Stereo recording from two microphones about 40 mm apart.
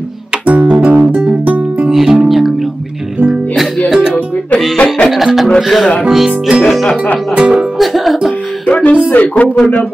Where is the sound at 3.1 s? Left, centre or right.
Right.